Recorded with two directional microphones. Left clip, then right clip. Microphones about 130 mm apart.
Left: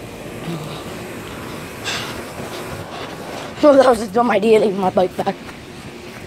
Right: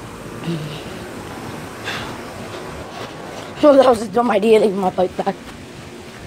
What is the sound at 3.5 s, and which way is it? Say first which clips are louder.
A woman's voice: even; 30° right (ahead or behind).